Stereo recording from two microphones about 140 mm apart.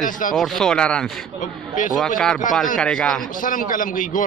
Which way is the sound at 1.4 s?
70° left (ahead or behind).